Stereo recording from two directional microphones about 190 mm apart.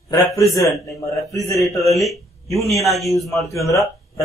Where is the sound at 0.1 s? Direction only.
15° left (ahead or behind).